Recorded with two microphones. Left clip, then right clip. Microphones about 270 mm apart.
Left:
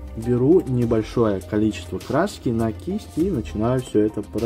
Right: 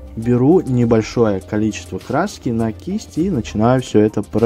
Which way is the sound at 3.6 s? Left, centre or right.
Right.